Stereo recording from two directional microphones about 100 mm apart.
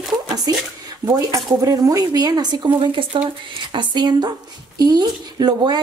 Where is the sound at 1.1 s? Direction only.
35° right (ahead or behind).